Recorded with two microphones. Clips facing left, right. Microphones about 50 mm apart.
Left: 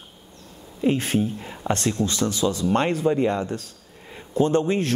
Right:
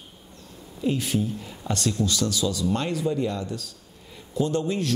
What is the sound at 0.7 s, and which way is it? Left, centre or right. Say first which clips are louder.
Speech: left 4 dB; left.